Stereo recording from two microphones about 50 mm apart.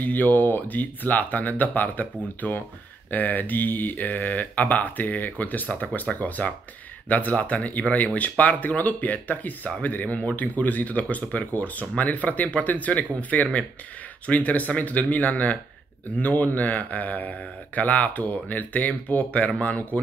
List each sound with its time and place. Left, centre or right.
0.0 s speech: left